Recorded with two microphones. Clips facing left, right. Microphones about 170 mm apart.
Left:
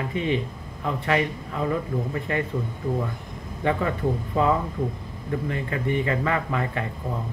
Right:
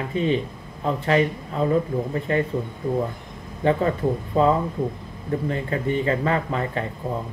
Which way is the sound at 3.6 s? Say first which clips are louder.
Right 4 dB; 30° right (ahead or behind).